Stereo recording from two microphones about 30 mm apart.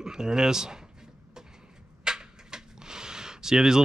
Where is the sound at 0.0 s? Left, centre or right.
Right.